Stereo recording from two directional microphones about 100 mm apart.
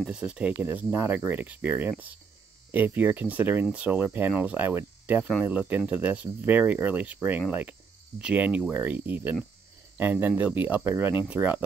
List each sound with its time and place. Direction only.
0.0 s speech: 10° right (ahead or behind)